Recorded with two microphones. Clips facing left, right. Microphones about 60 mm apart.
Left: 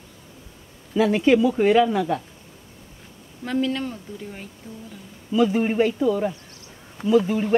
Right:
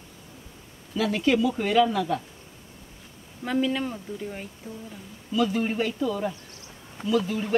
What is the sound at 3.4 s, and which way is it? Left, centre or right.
Speech, centre.